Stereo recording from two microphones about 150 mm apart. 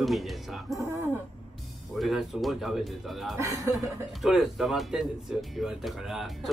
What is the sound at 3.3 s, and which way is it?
Speech, 20° right (ahead or behind).